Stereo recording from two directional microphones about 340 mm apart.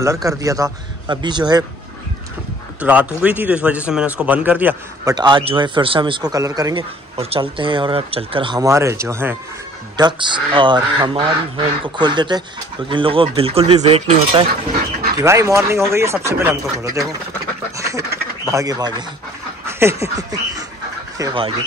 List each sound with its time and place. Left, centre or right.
0.0 s a man's voice: centre
2.8 s a man's voice: centre
17.7 s duck: centre
18.4 s a man's voice: centre